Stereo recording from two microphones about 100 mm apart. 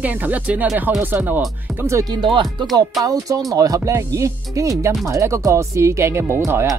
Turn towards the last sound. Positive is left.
turn(degrees=-25)  # may be behind; listen again after turning